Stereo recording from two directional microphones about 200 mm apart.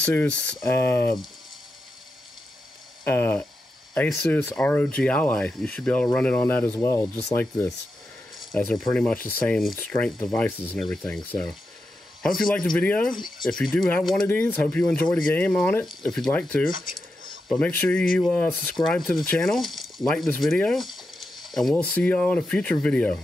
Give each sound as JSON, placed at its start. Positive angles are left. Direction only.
{"t": 0.0, "sound": "speech", "side_deg": 10}
{"t": 3.0, "sound": "speech", "side_deg": 10}
{"t": 8.5, "sound": "speech", "side_deg": 5}
{"t": 12.2, "sound": "speech", "side_deg": 5}
{"t": 13.1, "sound": "speech", "side_deg": 20}
{"t": 13.5, "sound": "speech", "side_deg": 0}